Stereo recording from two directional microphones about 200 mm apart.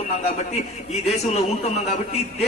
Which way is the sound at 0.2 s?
35° left (ahead or behind).